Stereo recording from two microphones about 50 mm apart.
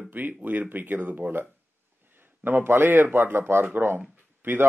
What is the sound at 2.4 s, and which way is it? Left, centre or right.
A man's voice, right.